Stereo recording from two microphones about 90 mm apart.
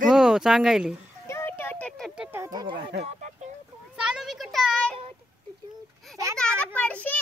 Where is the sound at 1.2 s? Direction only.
25° left (ahead or behind).